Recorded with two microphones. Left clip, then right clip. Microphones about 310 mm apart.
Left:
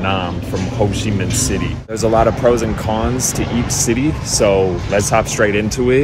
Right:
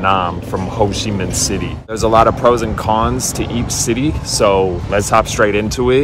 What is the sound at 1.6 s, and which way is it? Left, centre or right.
Speech, centre.